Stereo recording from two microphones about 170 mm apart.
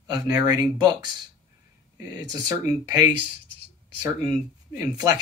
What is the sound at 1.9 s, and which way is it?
Speech, 20° right (ahead or behind).